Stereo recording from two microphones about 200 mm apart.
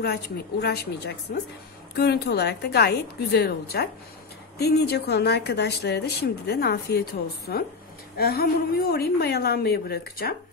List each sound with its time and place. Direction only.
0.0 s a woman's voice: 55° left (ahead or behind)